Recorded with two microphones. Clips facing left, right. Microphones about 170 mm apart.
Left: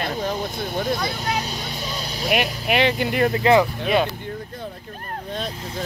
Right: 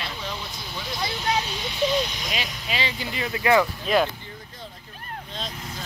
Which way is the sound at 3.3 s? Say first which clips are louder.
Left 2 dB; 25° left (ahead or behind).